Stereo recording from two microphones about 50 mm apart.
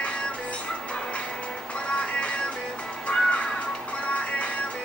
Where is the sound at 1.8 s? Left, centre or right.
Left.